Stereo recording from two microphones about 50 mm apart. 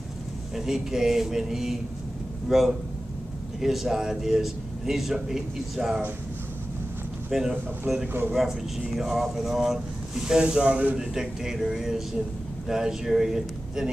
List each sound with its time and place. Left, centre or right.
0.6 s a man's voice: centre
7.2 s a man's voice: centre
11.0 s a man's voice: centre